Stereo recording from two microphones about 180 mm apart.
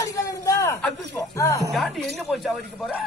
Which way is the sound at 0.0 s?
20° left (ahead or behind).